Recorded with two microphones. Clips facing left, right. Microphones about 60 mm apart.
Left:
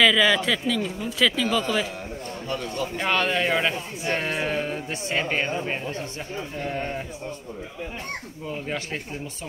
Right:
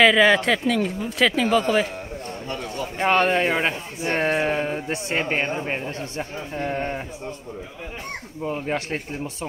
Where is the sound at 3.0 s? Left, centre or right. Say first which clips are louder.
Right 5 dB; right.